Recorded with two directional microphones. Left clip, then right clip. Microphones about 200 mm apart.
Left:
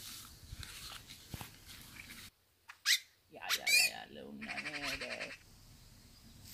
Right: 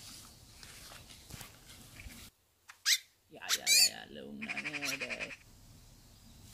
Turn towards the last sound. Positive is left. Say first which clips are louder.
# right 3 dB
turn(degrees=0)  # may be behind; listen again after turning